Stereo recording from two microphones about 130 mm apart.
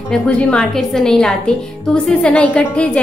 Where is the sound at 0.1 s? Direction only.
10° left (ahead or behind).